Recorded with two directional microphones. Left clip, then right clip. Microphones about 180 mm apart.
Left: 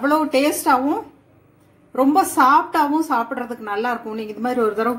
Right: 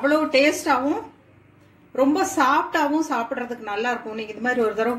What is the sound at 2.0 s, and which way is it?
A woman's voice, 35° left (ahead or behind).